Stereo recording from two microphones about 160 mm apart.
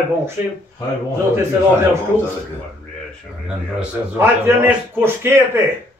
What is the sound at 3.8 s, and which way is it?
A man's voice, 15° right (ahead or behind).